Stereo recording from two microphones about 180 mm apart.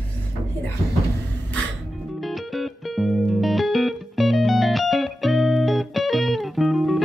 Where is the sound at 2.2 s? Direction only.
Centre (ahead or behind).